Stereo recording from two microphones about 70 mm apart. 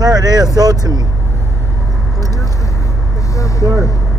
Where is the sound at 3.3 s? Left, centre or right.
Left.